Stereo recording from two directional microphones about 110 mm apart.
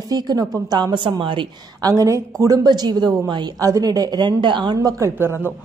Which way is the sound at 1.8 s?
30° right (ahead or behind).